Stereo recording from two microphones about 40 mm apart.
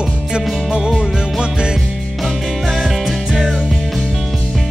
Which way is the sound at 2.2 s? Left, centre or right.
Centre.